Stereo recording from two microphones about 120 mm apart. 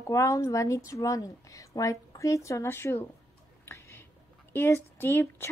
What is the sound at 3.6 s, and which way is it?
Whispering, 20° left (ahead or behind).